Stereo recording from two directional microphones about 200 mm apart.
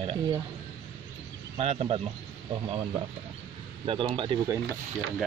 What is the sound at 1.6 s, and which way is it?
Speech, 30° right (ahead or behind).